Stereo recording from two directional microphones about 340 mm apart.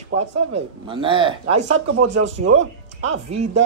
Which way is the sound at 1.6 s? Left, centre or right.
Right.